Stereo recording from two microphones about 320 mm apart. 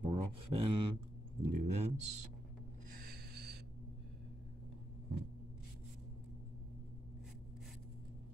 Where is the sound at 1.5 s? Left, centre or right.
Right.